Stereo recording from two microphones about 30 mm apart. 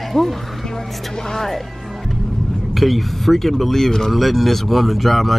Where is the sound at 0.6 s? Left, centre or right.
Centre.